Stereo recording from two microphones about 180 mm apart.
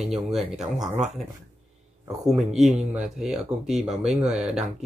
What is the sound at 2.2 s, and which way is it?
Speech, centre (ahead or behind).